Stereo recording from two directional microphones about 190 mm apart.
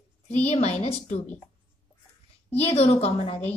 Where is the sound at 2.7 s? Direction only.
30° left (ahead or behind).